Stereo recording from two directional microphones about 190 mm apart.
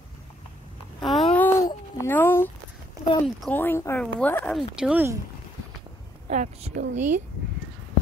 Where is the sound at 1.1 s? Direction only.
5° left (ahead or behind).